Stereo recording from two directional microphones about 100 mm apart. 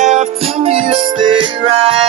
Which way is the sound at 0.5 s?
80° right.